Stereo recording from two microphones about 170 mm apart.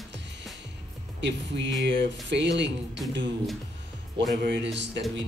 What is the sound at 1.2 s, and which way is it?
Speech, 90° right.